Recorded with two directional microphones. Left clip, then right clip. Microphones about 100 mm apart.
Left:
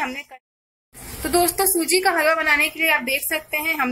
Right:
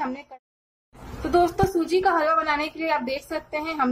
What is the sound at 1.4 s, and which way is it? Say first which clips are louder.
A woman's voice: even; 5° left (ahead or behind).